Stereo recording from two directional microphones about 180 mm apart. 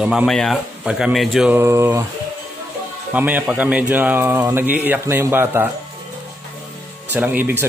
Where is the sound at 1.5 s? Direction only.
15° right (ahead or behind).